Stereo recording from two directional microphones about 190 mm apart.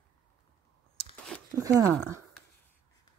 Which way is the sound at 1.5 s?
15° right (ahead or behind).